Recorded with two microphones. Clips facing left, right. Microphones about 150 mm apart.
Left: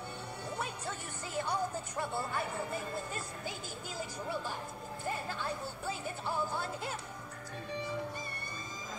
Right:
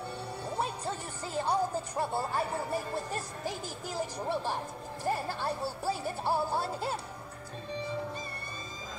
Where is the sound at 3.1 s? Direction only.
40° right (ahead or behind).